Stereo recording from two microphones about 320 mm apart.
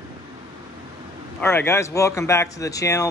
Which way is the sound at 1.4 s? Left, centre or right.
Centre.